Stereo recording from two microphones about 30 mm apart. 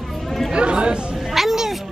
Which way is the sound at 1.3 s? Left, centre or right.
Centre.